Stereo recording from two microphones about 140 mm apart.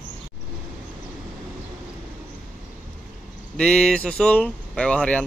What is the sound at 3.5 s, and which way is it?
Speech, 5° left (ahead or behind).